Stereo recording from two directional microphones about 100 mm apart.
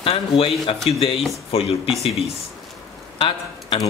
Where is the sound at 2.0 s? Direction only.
85° left.